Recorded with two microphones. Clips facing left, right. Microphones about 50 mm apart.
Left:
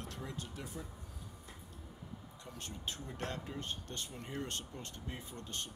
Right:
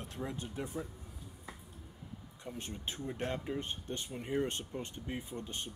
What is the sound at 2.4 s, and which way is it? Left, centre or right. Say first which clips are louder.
Speech: right 6 dB; right.